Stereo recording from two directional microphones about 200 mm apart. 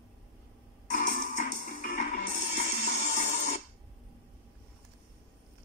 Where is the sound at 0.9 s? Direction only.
40° left (ahead or behind).